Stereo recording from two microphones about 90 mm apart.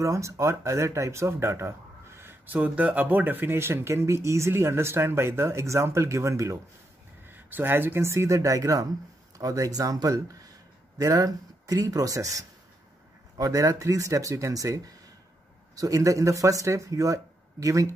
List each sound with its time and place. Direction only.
0.0 s speech: 35° right (ahead or behind)
7.2 s speech: 20° right (ahead or behind); by 17.9 s 35° right (ahead or behind)